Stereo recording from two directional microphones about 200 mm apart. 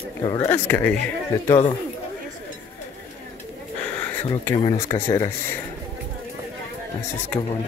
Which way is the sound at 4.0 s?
10° left (ahead or behind).